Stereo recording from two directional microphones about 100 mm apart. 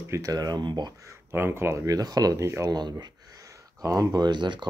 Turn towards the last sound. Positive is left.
turn(degrees=-50)  # may be behind; listen again after turning